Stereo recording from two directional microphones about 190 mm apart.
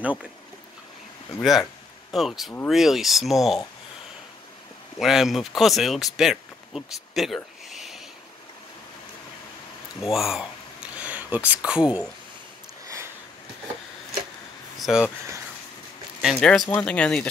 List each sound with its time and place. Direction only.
0.0 s speech: 5° right (ahead or behind)
1.4 s speech: centre (ahead or behind)
4.9 s speech: centre (ahead or behind)
10.0 s speech: centre (ahead or behind)
12.8 s sniff: 15° right (ahead or behind)
14.8 s speech: centre (ahead or behind)
16.2 s speech: centre (ahead or behind)